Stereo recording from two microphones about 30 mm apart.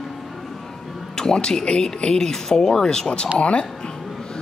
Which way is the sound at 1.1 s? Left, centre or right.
Left.